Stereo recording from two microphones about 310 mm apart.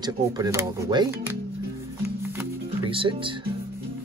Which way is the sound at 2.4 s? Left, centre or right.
Centre.